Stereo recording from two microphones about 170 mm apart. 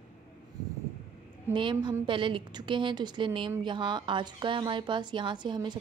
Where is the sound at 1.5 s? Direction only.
30° right (ahead or behind).